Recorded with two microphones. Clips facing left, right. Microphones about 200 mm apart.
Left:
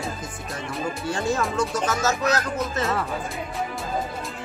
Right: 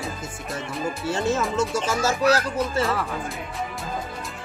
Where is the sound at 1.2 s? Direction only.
Centre (ahead or behind).